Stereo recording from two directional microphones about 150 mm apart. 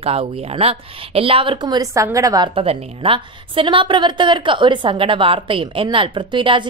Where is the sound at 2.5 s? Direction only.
40° right (ahead or behind).